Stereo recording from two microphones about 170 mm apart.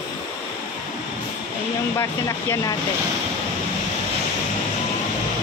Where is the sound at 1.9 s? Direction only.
20° left (ahead or behind).